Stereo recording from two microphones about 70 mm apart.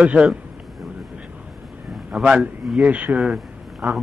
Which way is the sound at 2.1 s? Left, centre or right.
Centre.